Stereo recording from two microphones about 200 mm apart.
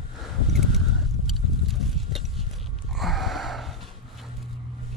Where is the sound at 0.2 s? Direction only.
Centre (ahead or behind).